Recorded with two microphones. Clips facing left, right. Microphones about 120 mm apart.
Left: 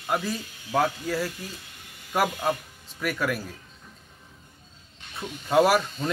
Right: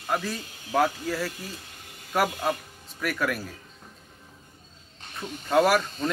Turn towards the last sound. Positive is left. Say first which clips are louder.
# left 1 dB
turn(degrees=5)  # may be behind; listen again after turning